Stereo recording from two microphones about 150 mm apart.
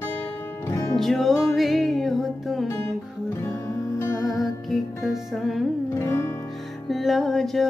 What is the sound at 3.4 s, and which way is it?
Music, 15° left (ahead or behind).